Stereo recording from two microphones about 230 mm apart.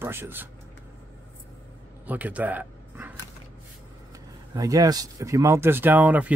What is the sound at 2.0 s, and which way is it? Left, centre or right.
Bow-wow, centre.